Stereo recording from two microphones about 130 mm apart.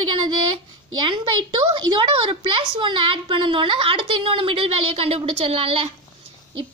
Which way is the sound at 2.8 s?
40° right (ahead or behind).